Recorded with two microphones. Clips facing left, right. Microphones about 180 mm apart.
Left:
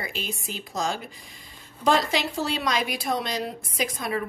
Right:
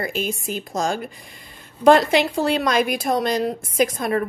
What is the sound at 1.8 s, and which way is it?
A woman's voice, 60° right (ahead or behind).